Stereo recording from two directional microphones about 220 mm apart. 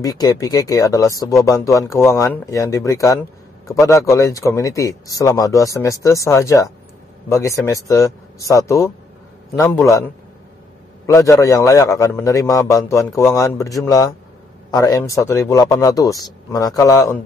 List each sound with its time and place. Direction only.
0.0 s speech: 15° left (ahead or behind)
11.1 s speech: 10° left (ahead or behind)